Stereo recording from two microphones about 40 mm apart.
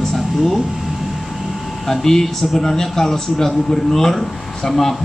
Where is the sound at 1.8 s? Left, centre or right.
Centre.